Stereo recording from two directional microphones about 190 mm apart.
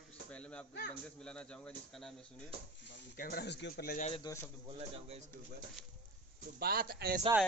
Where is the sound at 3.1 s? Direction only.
50° left (ahead or behind).